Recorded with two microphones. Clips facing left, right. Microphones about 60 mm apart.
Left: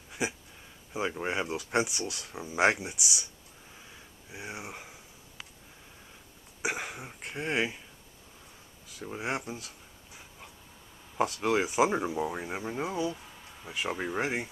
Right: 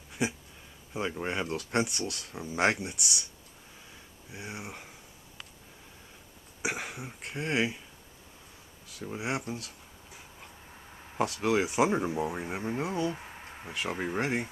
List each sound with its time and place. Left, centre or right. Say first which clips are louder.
0.2 s speech: right 2 dB; centre
4.3 s speech: even; centre
6.6 s speech: left 1 dB; centre
8.8 s speech: even; centre
11.1 s speech: even; centre
13.1 s a sound: right 3 dB; right
14.1 s speech: right 2 dB; centre